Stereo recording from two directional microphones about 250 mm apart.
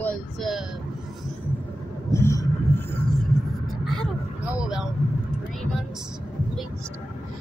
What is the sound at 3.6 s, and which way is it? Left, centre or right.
Vehicle, centre.